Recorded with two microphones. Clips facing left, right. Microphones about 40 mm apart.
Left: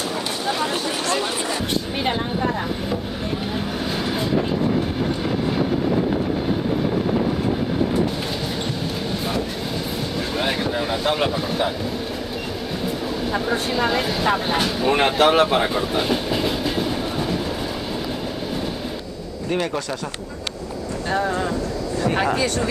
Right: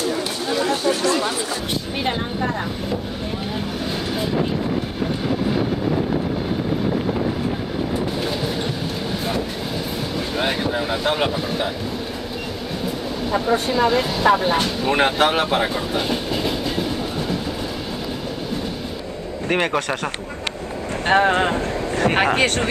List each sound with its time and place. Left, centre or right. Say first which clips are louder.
2.0 s speech: even; centre
3.5 s vehicle: left 1 dB; centre
10.1 s a sound: right 1 dB; centre
12.8 s speech: left 1 dB; centre
19.5 s speech: right 3 dB; right
21.1 s speech: right 6 dB; right